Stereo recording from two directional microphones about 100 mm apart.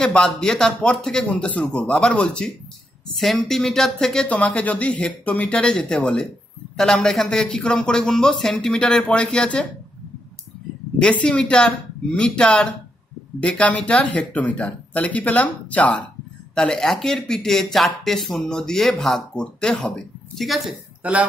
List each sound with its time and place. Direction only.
0.0 s speech: 10° left (ahead or behind)
11.0 s speech: 10° left (ahead or behind)
21.0 s speech: 15° right (ahead or behind)